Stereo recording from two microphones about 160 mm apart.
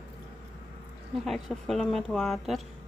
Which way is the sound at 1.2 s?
Centre (ahead or behind).